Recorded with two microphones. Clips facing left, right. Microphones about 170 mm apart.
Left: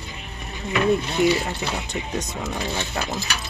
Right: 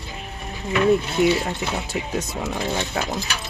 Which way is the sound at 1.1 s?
5° right (ahead or behind).